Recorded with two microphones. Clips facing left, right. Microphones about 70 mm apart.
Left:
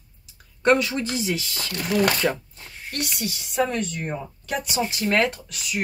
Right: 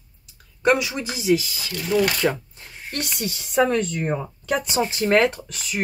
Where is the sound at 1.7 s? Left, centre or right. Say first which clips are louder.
Right 1 dB; left.